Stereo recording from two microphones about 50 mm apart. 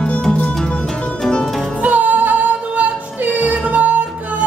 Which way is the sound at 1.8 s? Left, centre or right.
Right.